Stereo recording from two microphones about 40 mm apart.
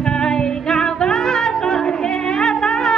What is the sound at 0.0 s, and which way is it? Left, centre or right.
Music, centre.